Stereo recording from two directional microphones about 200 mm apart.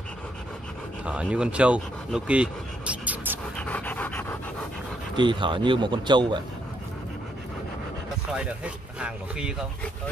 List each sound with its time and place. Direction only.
1.0 s speech: 5° right (ahead or behind)
3.5 s pant: 5° left (ahead or behind)
5.1 s speech: 25° right (ahead or behind)
8.3 s speech: 5° right (ahead or behind)